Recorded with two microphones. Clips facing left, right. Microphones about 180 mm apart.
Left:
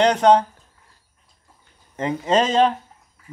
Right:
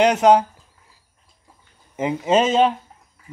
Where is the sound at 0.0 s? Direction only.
10° right (ahead or behind).